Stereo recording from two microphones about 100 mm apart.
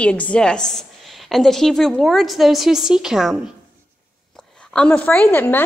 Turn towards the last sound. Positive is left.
turn(degrees=20)  # may be behind; listen again after turning